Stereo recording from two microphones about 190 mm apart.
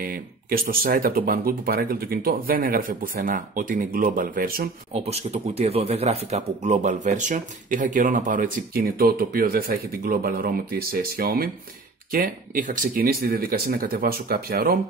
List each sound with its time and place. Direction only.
0.0 s speech: 50° right (ahead or behind)
4.9 s speech: 35° right (ahead or behind); by 14.8 s 55° right (ahead or behind)